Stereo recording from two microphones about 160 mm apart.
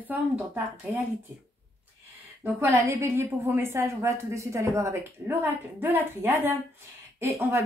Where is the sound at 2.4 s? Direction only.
15° right (ahead or behind).